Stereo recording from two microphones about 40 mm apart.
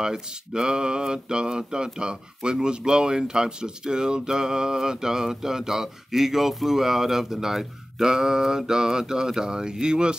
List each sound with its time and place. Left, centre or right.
0.0 s mantra: centre